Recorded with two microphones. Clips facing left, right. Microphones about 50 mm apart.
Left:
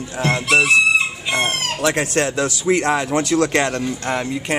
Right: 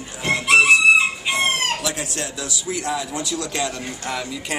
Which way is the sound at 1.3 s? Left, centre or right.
Left.